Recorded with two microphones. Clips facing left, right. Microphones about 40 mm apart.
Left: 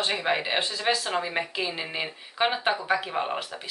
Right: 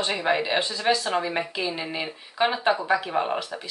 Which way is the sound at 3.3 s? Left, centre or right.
Centre.